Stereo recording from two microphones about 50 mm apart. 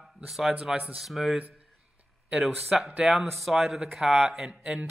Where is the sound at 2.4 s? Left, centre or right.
Centre.